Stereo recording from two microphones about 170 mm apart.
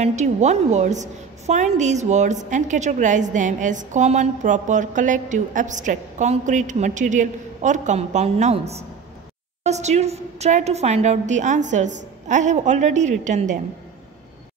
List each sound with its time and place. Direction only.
0.0 s a woman's voice: 45° right (ahead or behind)